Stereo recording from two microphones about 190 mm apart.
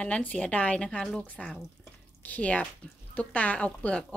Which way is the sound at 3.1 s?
5° left (ahead or behind).